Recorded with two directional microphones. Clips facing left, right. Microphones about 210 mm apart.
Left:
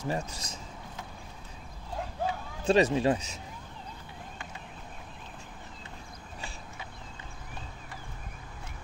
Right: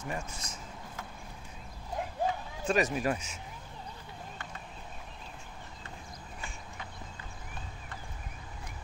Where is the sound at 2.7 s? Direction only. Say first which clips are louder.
Left 5 dB; 30° left (ahead or behind).